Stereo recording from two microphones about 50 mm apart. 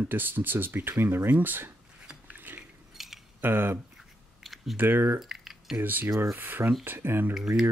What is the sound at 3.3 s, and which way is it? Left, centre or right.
Speech, right.